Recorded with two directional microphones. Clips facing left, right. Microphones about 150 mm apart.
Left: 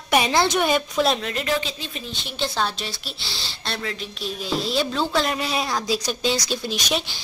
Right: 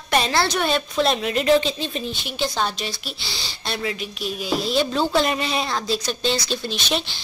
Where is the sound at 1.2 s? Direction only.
20° right (ahead or behind).